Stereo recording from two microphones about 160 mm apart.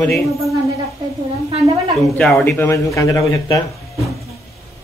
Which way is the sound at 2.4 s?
15° left (ahead or behind).